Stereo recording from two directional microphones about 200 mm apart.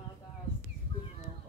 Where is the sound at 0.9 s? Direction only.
30° left (ahead or behind).